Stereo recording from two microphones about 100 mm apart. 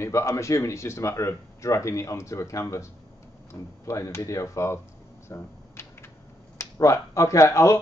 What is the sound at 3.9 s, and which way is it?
Speech, 35° left (ahead or behind).